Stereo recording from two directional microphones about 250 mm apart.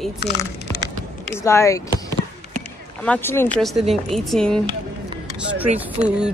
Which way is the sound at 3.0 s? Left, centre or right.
Centre.